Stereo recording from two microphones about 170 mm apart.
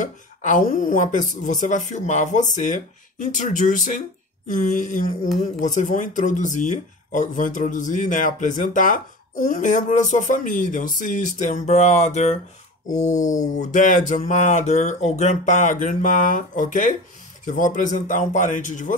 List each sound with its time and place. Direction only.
0.0 s speech: 50° left (ahead or behind)
13.5 s speech: 45° left (ahead or behind)